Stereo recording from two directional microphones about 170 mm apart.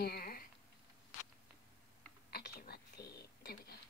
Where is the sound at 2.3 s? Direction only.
65° left (ahead or behind).